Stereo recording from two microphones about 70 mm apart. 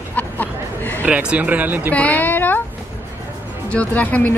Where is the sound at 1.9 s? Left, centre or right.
Left.